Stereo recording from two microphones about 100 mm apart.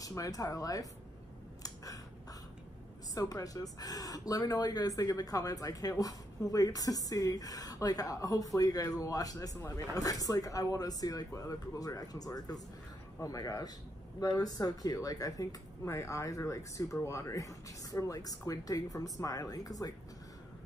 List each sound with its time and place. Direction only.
0.0 s speech: 35° left (ahead or behind)
3.2 s speech: 35° left (ahead or behind)